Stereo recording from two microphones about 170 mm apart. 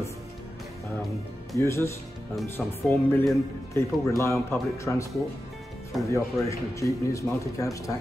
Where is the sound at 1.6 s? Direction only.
15° left (ahead or behind).